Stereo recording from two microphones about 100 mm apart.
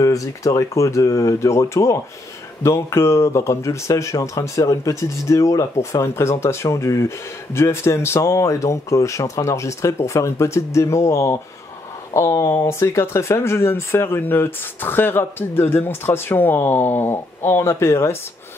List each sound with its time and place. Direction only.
0.0 s speech: 35° left (ahead or behind)